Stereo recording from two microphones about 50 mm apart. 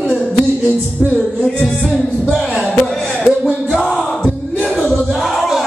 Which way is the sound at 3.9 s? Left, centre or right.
Centre.